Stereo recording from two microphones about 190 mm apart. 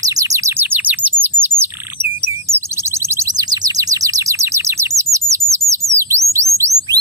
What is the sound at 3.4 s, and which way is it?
Chirp, 20° right (ahead or behind).